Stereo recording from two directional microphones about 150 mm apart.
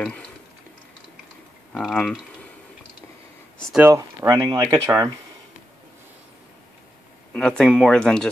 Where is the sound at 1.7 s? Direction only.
5° left (ahead or behind).